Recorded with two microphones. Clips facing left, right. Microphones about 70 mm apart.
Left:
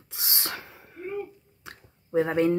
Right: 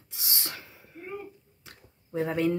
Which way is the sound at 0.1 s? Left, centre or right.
Left.